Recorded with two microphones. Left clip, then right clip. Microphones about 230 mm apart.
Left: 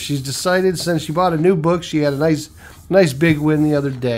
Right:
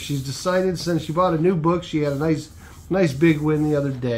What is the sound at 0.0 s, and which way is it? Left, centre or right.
Speech, left.